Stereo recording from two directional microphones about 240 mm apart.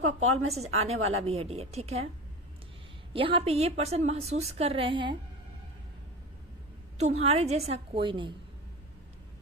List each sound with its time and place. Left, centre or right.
0.0 s a sound: right
0.5 s a woman's voice: right
3.1 s a woman's voice: right
7.0 s a woman's voice: right